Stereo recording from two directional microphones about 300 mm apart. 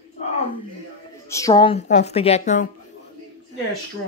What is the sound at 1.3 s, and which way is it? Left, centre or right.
A woman's voice, centre.